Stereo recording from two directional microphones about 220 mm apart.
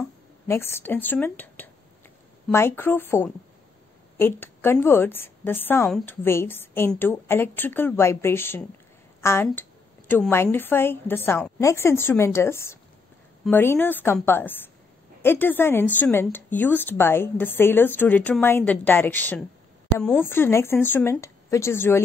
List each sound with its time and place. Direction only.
0.5 s a woman's voice: 10° left (ahead or behind)